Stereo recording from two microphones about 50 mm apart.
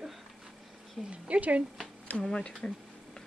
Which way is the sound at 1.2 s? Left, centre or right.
Right.